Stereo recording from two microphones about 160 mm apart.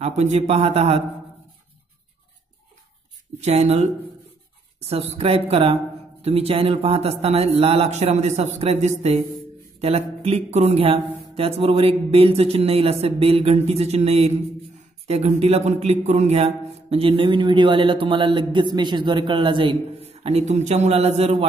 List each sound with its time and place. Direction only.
0.0 s speech: 45° right (ahead or behind)
3.3 s speech: 45° right (ahead or behind)